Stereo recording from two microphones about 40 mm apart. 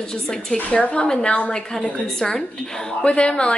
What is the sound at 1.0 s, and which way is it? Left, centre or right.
A woman's voice, centre.